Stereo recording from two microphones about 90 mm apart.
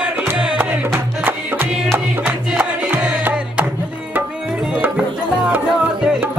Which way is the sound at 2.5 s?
15° right (ahead or behind).